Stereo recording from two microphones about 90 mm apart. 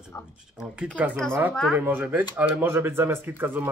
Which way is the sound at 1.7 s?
20° right (ahead or behind).